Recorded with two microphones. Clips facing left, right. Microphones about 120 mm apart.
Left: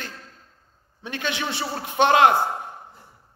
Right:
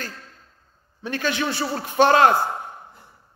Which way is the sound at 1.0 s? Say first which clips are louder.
Right 4 dB; 20° left (ahead or behind).